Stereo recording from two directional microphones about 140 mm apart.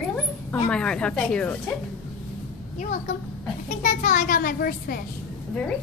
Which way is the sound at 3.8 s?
65° left (ahead or behind).